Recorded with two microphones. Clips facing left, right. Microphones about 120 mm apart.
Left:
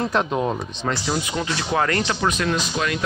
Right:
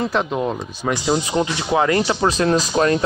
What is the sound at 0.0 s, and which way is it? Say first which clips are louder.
Speech: right 1 dB; centre (ahead or behind).